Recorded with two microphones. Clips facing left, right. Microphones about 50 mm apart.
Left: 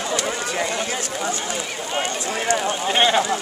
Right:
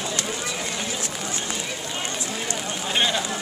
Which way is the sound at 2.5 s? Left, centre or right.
Left.